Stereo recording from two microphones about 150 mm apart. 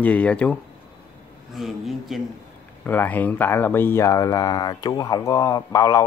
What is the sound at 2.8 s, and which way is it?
Speech, 10° left (ahead or behind).